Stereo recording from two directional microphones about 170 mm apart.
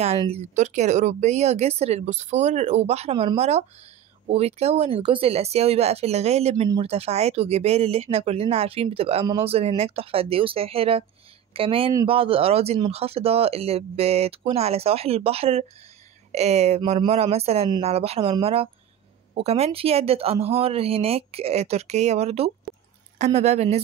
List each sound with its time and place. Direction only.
0.2 s speech: 40° right (ahead or behind)